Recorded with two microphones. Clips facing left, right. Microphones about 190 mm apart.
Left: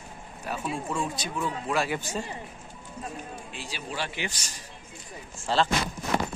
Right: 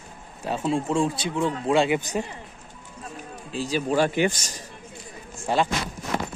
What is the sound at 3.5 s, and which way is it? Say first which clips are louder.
A man's voice: right 18 dB; 40° right (ahead or behind).